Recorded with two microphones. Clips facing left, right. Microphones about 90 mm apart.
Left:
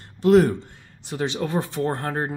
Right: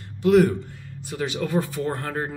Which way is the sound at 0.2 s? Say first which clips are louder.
Left 1 dB; 35° left (ahead or behind).